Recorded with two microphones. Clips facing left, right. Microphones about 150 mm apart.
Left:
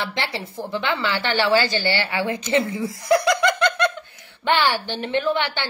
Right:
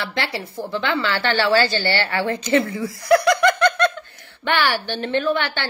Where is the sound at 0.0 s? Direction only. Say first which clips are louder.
Right 1 dB; 20° left (ahead or behind).